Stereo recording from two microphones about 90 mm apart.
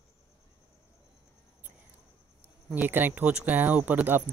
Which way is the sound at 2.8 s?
20° right (ahead or behind).